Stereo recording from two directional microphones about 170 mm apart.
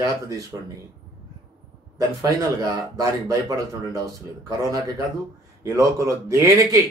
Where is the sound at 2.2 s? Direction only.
20° right (ahead or behind).